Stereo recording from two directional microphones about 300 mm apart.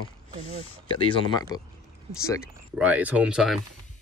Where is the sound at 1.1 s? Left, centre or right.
Centre.